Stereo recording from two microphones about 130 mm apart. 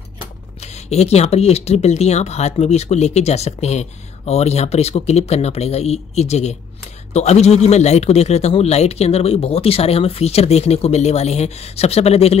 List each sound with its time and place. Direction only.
0.8 s speech: 55° left (ahead or behind)